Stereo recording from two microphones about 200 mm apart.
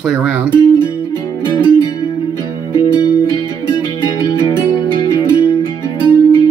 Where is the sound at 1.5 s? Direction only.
20° left (ahead or behind).